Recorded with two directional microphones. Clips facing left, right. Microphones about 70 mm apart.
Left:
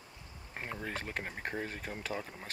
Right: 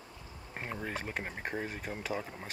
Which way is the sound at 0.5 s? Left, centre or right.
Centre.